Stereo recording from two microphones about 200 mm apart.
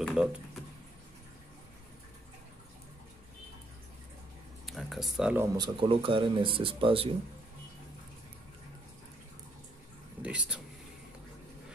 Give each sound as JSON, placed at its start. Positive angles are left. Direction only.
{"t": 0.0, "sound": "a sound", "side_deg": 0}
{"t": 4.6, "sound": "speech", "side_deg": 0}
{"t": 5.6, "sound": "speech", "side_deg": -25}
{"t": 10.2, "sound": "speech", "side_deg": -5}